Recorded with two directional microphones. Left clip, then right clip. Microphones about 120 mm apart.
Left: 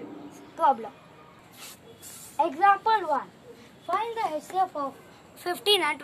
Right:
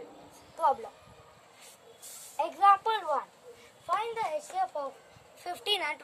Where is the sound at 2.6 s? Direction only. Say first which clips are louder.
Left 2 dB; 40° right (ahead or behind).